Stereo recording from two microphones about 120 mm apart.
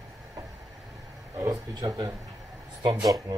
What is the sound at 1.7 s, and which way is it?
Speech, 35° right (ahead or behind).